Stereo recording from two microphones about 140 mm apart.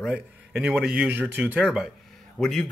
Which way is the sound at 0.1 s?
5° right (ahead or behind).